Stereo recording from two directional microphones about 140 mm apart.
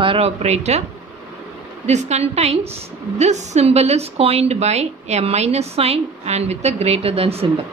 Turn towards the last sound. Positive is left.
turn(degrees=-45)  # may be behind; listen again after turning